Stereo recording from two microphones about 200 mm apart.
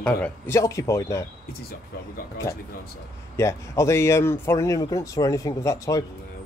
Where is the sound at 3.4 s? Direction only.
15° left (ahead or behind).